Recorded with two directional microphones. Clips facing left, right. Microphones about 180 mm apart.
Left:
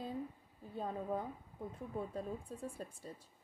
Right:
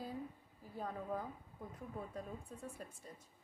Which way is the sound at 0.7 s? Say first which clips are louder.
Left 3 dB; 25° left (ahead or behind).